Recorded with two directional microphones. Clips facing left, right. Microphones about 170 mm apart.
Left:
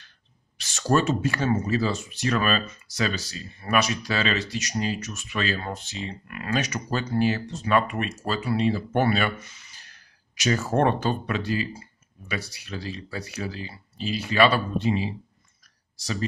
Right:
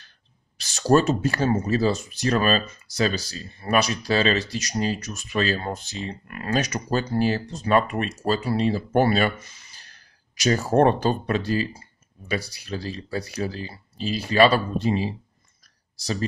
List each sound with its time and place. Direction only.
0.6 s speech: 35° right (ahead or behind)